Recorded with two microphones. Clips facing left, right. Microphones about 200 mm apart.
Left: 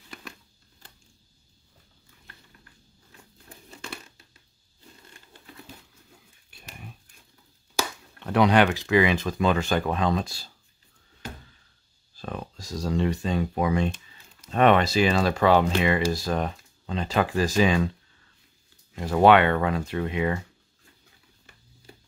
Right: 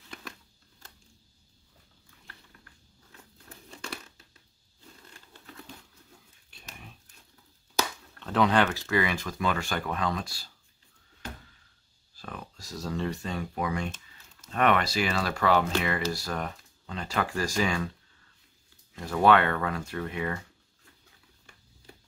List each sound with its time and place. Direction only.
3.4 s crumpling: 5° left (ahead or behind)
7.7 s speech: 15° left (ahead or behind)
12.2 s speech: 25° left (ahead or behind)
18.9 s speech: 20° left (ahead or behind)